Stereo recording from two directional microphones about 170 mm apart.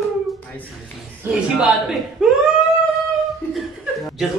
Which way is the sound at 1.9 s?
Centre (ahead or behind).